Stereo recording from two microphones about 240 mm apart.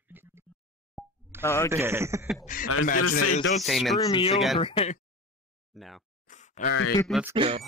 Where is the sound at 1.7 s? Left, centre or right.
Centre.